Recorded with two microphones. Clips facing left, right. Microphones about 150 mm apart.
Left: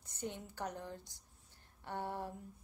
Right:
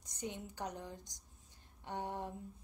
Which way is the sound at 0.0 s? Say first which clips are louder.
Even; 15° right (ahead or behind).